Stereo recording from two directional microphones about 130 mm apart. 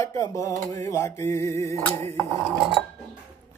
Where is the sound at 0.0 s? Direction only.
25° left (ahead or behind).